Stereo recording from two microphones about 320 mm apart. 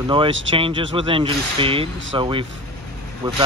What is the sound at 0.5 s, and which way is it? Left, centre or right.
Speech, centre.